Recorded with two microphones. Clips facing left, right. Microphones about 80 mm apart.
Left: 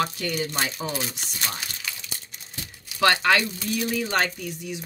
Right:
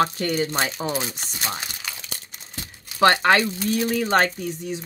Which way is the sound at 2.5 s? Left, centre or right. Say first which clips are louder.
Right 2 dB; right.